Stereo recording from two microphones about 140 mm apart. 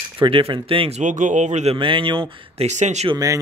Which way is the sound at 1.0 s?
65° right (ahead or behind).